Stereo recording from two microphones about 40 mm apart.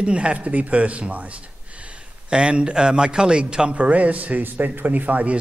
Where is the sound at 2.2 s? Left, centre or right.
Right.